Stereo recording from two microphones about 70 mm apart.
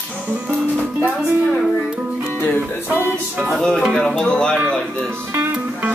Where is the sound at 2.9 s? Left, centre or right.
Right.